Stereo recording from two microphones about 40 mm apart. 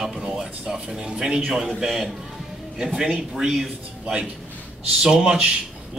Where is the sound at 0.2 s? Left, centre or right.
Centre.